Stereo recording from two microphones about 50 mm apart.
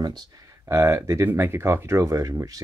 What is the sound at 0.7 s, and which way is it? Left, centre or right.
Speech, right.